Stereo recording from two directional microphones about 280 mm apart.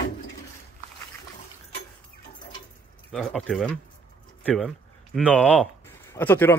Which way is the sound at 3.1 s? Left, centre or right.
Centre.